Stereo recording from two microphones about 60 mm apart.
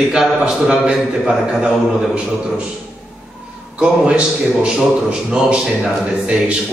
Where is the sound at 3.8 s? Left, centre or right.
Centre.